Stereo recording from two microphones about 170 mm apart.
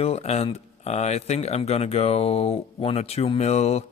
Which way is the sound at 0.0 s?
40° left (ahead or behind).